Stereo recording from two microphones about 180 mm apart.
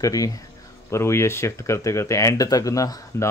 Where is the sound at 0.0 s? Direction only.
20° left (ahead or behind).